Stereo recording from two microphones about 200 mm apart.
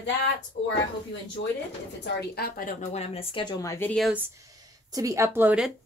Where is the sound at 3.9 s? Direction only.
Centre (ahead or behind).